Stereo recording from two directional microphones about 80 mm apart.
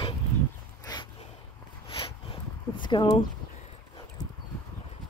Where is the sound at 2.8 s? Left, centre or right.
Left.